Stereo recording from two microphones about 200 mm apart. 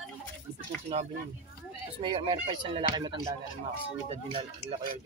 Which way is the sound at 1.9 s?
25° right (ahead or behind).